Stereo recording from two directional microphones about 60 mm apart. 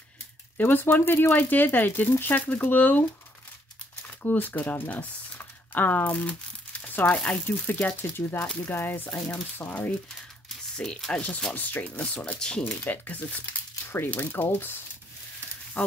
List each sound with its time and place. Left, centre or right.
0.6 s speech: left
4.2 s speech: left
8.2 s speech: left
8.6 s speech: left
10.8 s speech: centre
11.5 s speech: left
12.4 s speech: centre
12.6 s speech: left
13.8 s speech: left